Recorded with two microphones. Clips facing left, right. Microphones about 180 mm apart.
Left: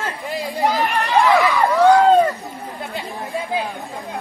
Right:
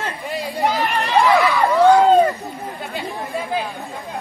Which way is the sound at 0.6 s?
Centre (ahead or behind).